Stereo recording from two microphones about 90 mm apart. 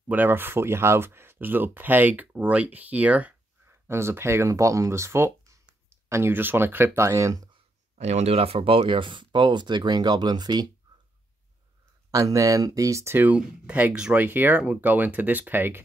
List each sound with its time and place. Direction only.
0.1 s speech: 20° right (ahead or behind)
3.8 s speech: 30° right (ahead or behind)
8.4 s speech: 90° right; by 10.7 s 50° right (ahead or behind)
12.1 s speech: 40° right (ahead or behind)
13.3 s speech: 20° right (ahead or behind)